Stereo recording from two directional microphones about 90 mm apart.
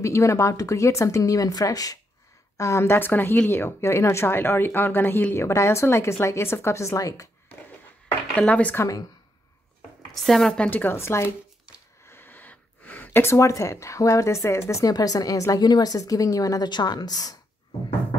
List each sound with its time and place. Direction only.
0.0 s a woman's voice: 35° left (ahead or behind)
8.4 s speech: 15° left (ahead or behind)
9.8 s a sound: centre (ahead or behind)
10.7 s speech: 25° left (ahead or behind)
11.2 s shuffling cards: 15° right (ahead or behind)
12.1 s speech: 25° left (ahead or behind); by 16.6 s 40° left (ahead or behind)
16.6 s a woman's voice: 55° left (ahead or behind)